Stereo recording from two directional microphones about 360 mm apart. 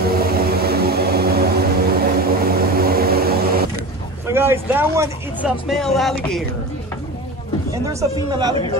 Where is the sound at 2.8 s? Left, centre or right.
Right.